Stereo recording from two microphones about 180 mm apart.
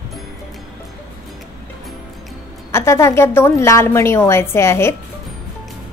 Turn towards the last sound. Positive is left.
turn(degrees=15)  # may be behind; listen again after turning